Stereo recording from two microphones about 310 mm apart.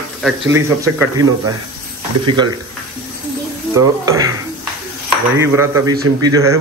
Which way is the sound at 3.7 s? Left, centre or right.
Centre.